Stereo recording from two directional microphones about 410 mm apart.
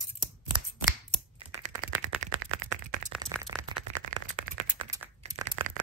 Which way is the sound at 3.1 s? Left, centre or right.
Centre.